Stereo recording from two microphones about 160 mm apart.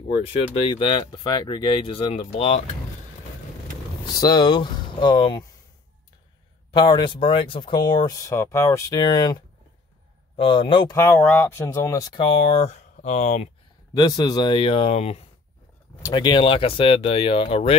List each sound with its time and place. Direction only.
0.7 s speech: 30° left (ahead or behind)
4.2 s speech: 25° left (ahead or behind)
6.7 s speech: 30° left (ahead or behind)
10.9 s speech: 10° left (ahead or behind); by 12.4 s 30° left (ahead or behind)
12.4 s speech: 45° left (ahead or behind)
13.9 s speech: 25° left (ahead or behind); by 15.2 s 40° left (ahead or behind)
16.0 s speech: 25° left (ahead or behind)